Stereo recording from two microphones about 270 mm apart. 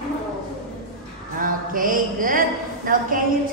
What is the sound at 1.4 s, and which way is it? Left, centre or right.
Mantra, right.